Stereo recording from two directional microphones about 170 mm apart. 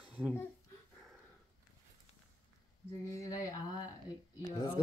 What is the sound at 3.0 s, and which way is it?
Speech, 20° left (ahead or behind).